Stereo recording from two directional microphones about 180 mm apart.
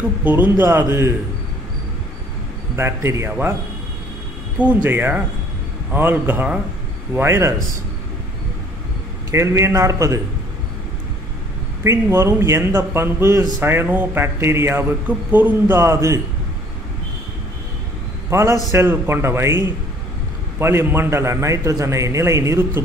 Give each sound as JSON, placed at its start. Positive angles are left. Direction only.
{"t": 0.2, "sound": "speech", "side_deg": -10}
{"t": 2.7, "sound": "speech", "side_deg": -15}
{"t": 4.8, "sound": "speech", "side_deg": -10}
{"t": 9.3, "sound": "speech", "side_deg": -15}
{"t": 11.8, "sound": "speech", "side_deg": -15}
{"t": 18.3, "sound": "speech", "side_deg": -15}